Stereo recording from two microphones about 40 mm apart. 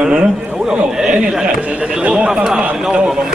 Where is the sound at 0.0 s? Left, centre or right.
Centre.